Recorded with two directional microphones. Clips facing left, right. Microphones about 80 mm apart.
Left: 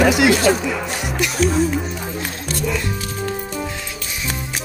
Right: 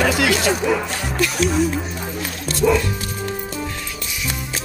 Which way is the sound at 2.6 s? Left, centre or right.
Right.